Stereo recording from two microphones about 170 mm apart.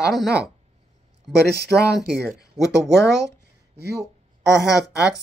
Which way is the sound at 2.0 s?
Centre (ahead or behind).